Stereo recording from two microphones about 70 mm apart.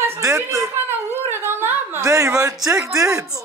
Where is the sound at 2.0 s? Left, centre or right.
Right.